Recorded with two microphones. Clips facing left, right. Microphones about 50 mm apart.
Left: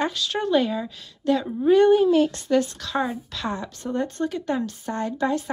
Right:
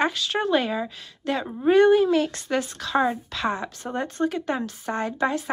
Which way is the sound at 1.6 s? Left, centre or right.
Right.